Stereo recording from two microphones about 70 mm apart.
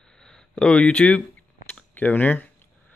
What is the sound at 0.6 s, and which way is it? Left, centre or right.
Speech, centre.